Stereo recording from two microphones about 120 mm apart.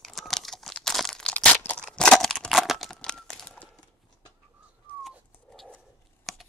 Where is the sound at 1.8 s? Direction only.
5° left (ahead or behind).